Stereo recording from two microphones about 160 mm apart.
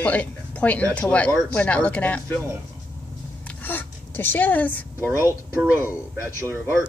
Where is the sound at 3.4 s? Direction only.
10° left (ahead or behind).